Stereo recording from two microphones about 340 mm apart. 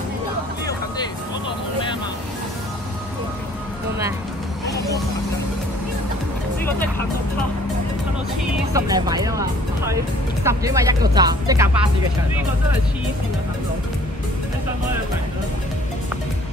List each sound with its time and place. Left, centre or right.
8.7 s speech: centre